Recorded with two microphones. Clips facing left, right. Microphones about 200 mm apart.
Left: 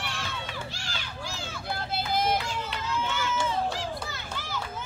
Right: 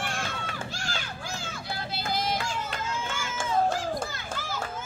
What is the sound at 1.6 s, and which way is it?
Vehicle, 55° left (ahead or behind).